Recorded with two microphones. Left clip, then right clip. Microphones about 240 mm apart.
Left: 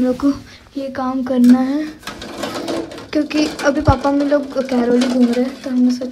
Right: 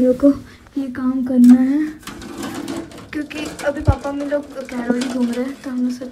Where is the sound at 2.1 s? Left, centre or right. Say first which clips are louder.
Left 4 dB; centre.